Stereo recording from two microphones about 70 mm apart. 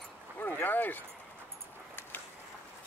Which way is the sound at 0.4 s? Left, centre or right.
Left.